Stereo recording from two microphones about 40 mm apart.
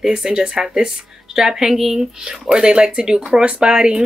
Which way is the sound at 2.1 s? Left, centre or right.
Centre.